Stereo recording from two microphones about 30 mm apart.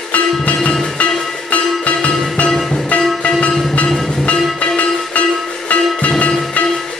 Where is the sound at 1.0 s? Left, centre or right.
Left.